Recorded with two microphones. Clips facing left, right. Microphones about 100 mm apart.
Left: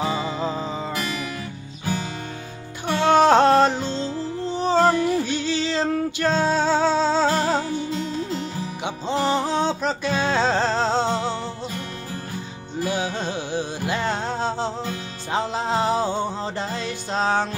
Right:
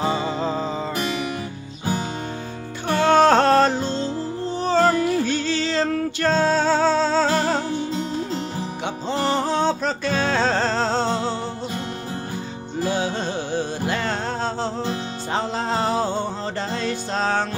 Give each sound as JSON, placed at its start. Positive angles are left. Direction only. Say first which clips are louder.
{"t": 0.0, "sound": "music", "louder": "right 2 dB", "side_deg": -30}
{"t": 0.4, "sound": "music", "louder": "right 2 dB", "side_deg": 10}
{"t": 0.9, "sound": "music", "louder": "right 3 dB", "side_deg": -30}
{"t": 3.1, "sound": "music", "louder": "even", "side_deg": 15}
{"t": 7.9, "sound": "music", "louder": "right 1 dB", "side_deg": -35}
{"t": 8.8, "sound": "music", "louder": "left 1 dB", "side_deg": 15}
{"t": 12.8, "sound": "music", "louder": "right 2 dB", "side_deg": 10}